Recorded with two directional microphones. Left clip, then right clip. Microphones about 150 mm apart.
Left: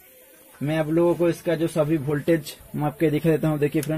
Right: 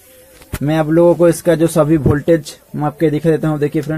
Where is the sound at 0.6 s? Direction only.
15° right (ahead or behind).